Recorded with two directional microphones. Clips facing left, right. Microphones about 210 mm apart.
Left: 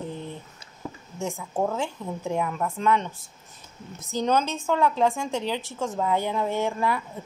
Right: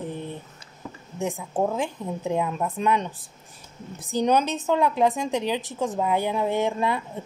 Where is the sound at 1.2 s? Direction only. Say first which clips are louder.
Right 2 dB; 15° right (ahead or behind).